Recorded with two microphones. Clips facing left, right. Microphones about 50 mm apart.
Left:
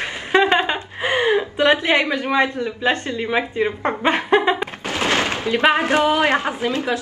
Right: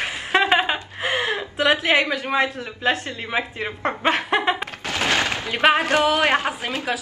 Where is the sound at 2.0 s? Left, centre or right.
Centre.